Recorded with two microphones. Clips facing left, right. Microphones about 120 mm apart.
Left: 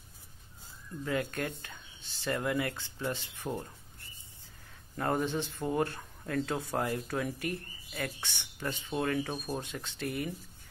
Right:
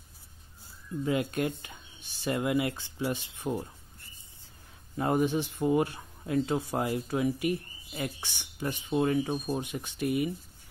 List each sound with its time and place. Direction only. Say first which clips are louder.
1.0 s speech: right 4 dB; 20° right (ahead or behind)
4.9 s speech: right 4 dB; 15° right (ahead or behind)